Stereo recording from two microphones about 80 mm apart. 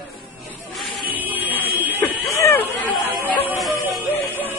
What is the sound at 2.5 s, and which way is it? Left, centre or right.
Chatter, left.